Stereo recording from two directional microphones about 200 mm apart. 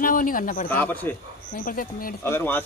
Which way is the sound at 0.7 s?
10° left (ahead or behind).